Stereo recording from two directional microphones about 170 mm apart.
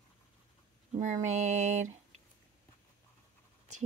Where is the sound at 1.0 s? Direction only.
45° right (ahead or behind).